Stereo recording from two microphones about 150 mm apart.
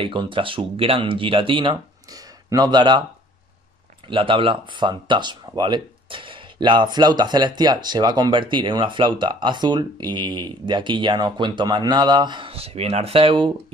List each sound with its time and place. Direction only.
0.0 s speech: 35° right (ahead or behind)
4.1 s speech: 35° right (ahead or behind)